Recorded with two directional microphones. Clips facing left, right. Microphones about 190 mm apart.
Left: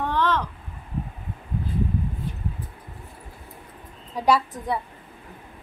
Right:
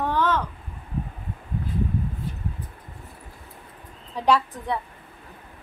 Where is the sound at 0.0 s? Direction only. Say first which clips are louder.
Even; 10° right (ahead or behind).